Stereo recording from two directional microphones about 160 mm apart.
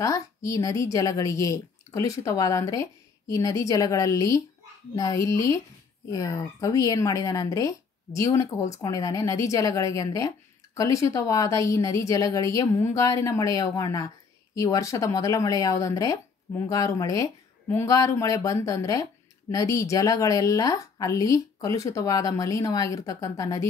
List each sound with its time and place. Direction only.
0.0 s speech: 20° left (ahead or behind)